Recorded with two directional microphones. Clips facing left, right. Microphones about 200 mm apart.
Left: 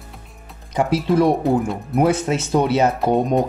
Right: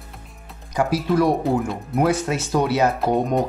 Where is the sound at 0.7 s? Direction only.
25° left (ahead or behind).